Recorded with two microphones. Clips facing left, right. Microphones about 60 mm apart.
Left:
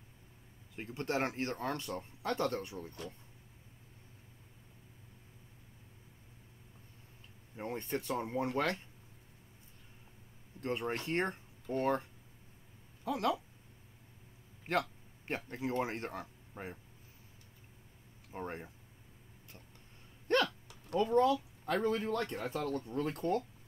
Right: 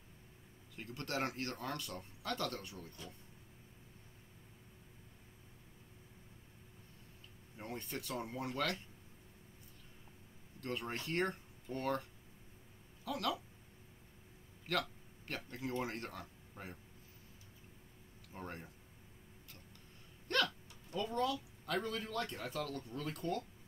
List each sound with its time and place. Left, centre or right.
0.7 s speech: left
7.5 s speech: left
10.6 s speech: left
14.7 s speech: left
18.3 s speech: left
20.3 s a sound: left
21.0 s speech: left